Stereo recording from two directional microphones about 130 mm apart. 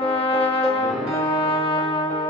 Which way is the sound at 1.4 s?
45° left (ahead or behind).